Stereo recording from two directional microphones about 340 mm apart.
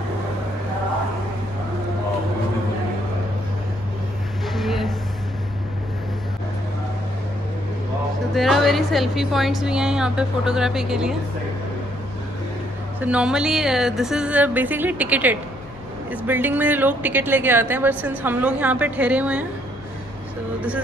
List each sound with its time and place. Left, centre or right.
4.5 s a sound: centre
8.4 s speech: centre
13.0 s speech: centre